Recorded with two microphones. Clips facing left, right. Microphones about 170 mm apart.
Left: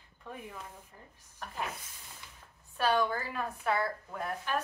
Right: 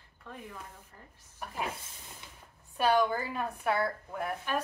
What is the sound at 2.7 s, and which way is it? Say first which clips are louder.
A woman's voice: right 2 dB; 15° right (ahead or behind).